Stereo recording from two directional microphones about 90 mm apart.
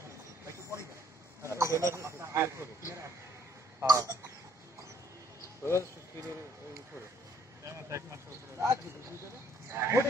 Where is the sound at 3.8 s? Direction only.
40° right (ahead or behind).